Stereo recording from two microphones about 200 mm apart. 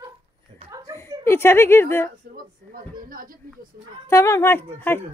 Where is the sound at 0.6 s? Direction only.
20° right (ahead or behind).